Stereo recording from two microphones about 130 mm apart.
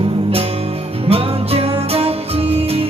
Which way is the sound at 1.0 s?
50° right (ahead or behind).